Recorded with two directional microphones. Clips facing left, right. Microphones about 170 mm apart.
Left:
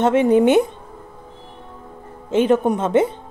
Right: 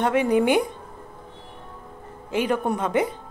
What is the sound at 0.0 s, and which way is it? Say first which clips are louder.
Speech: left 6 dB; 25° left (ahead or behind).